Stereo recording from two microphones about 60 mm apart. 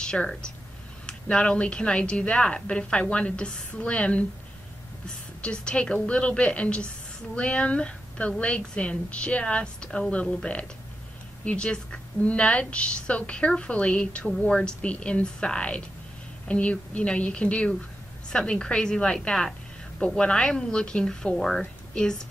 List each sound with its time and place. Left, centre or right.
0.0 s a woman's voice: centre